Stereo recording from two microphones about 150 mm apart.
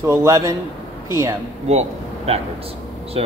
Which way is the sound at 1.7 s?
45° right (ahead or behind).